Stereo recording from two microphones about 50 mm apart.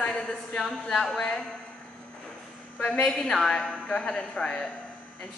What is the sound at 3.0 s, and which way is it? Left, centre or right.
A woman's voice, centre.